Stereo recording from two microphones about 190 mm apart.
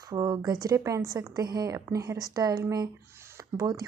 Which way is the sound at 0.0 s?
20° right (ahead or behind).